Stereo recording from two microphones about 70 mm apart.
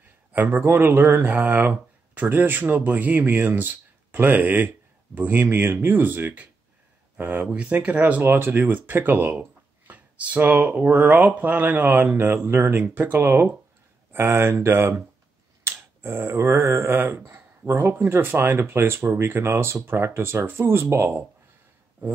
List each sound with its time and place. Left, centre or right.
0.3 s speech: right
8.2 s speech: right
15.6 s finger snapping: right
16.9 s speech: right